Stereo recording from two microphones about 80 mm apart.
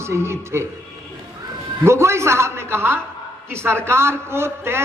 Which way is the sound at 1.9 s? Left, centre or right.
Right.